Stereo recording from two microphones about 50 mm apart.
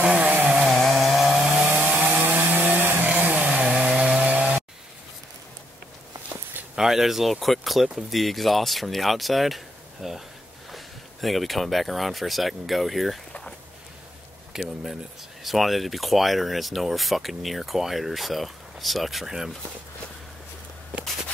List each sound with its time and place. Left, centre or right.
0.0 s chainsaw: right
0.6 s chainsaw: centre
1.9 s chainsaw: right
3.1 s chainsaw: right
6.7 s a man's voice: centre
14.5 s a man's voice: centre